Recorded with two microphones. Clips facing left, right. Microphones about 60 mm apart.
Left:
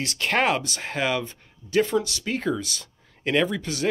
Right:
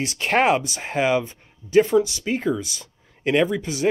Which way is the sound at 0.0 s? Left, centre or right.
Right.